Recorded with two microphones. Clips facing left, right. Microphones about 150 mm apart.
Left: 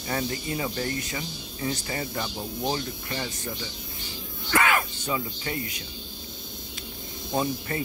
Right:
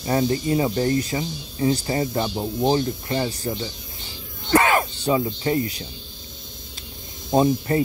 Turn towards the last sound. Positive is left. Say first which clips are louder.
# right 9 dB
turn(degrees=-30)  # may be behind; listen again after turning